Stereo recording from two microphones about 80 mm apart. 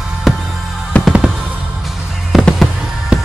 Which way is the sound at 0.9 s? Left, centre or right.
Centre.